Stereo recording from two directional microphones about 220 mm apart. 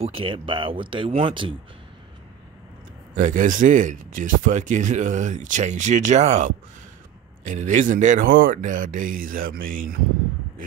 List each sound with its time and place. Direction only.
0.0 s speech: 25° right (ahead or behind)
3.2 s speech: 35° right (ahead or behind)